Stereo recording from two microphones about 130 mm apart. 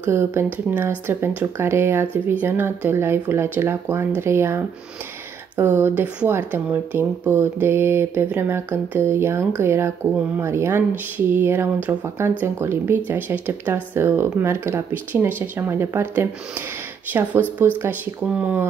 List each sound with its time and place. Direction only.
0.0 s speech: 20° right (ahead or behind)